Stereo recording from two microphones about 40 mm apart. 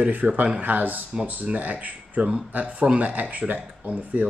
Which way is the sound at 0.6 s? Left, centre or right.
Right.